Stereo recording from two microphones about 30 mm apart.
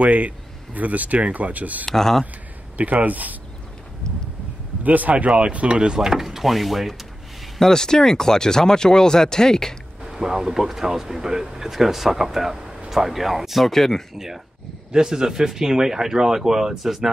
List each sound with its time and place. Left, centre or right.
0.0 s speech: right
1.9 s speech: centre
2.8 s speech: right
4.8 s speech: right
5.1 s speech: right
5.9 s speech: centre
7.5 s speech: centre
10.0 s speech: centre
13.7 s speech: centre
14.1 s speech: centre
16.8 s speech: centre